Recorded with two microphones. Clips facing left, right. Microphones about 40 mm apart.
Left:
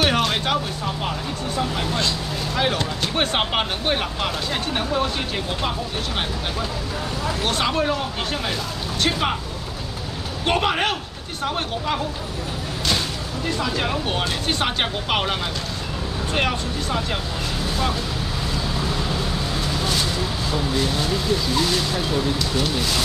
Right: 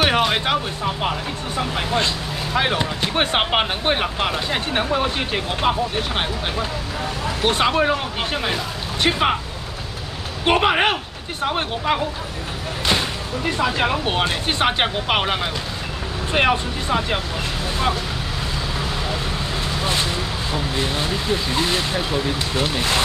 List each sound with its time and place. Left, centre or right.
0.0 s speech: centre
7.4 s speech: right
10.4 s speech: right
13.6 s speech: right
19.8 s vehicle: right
20.7 s speech: right